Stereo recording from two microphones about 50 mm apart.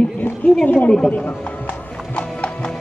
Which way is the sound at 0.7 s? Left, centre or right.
Centre.